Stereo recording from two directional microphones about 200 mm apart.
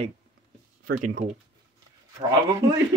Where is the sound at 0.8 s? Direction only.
40° right (ahead or behind).